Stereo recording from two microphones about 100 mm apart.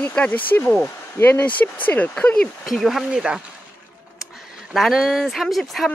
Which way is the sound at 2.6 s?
Centre (ahead or behind).